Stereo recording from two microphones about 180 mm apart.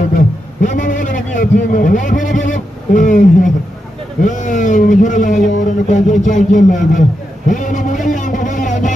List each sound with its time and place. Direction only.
0.1 s a man's voice: 45° left (ahead or behind)